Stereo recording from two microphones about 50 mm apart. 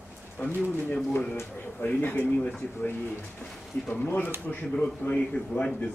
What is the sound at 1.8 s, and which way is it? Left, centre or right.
Speech, left.